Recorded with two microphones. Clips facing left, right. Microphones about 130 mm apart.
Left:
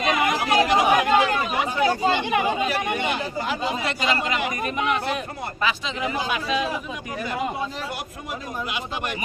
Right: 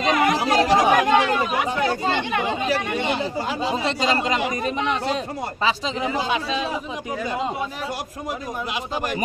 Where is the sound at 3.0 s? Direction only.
30° right (ahead or behind).